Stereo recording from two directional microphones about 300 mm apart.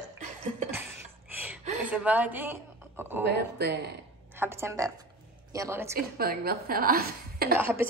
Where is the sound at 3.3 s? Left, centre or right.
Right.